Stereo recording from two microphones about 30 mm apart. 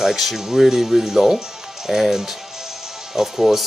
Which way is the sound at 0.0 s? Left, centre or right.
Centre.